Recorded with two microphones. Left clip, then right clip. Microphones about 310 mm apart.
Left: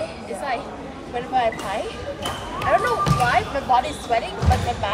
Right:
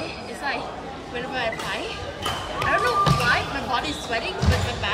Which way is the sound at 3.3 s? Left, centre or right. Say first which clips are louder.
Left 3 dB; centre.